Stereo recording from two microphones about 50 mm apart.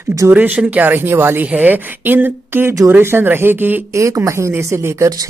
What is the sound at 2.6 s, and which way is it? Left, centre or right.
Speech, right.